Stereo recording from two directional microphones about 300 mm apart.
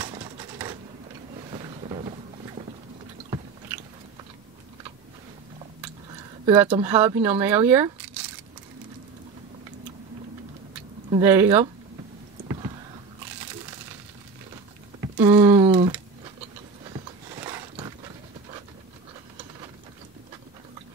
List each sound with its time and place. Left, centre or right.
0.0 s typewriter: centre
1.5 s boat: centre
3.3 s chewing: centre
6.4 s speech: centre
11.1 s speech: centre
12.4 s power windows: centre
15.0 s a sound: centre
16.9 s pant: centre